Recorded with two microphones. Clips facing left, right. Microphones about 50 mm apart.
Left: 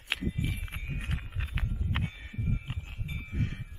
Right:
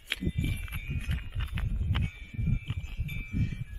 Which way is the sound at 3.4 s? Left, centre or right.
Left.